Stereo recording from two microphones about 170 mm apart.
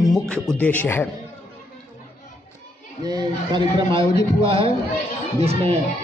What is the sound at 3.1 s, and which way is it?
A man's voice, 25° right (ahead or behind).